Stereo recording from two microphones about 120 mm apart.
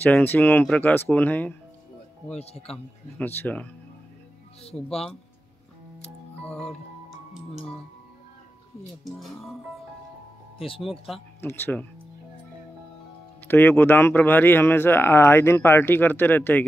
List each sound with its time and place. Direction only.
0.0 s speech: 15° left (ahead or behind)
2.3 s speech: 60° left (ahead or behind)
3.3 s speech: 10° left (ahead or behind)
4.7 s speech: 5° left (ahead or behind)
6.4 s speech: 5° left (ahead or behind)
9.0 s speech: centre (ahead or behind)
10.8 s speech: centre (ahead or behind)
11.4 s speech: 15° left (ahead or behind)
13.5 s speech: 15° left (ahead or behind)